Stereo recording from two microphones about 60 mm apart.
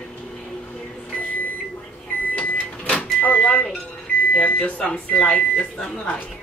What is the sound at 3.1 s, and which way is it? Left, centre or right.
Vehicle, left.